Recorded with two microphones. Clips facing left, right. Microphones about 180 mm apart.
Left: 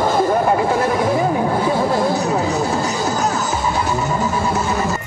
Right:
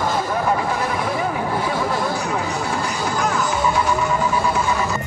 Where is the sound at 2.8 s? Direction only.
40° left (ahead or behind).